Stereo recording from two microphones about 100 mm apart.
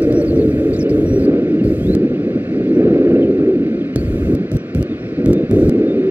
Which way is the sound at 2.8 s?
25° right (ahead or behind).